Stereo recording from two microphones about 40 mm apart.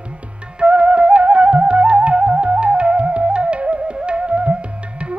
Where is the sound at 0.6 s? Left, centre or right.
Right.